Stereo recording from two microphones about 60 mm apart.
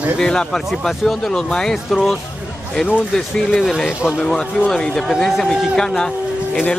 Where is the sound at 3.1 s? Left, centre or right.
Centre.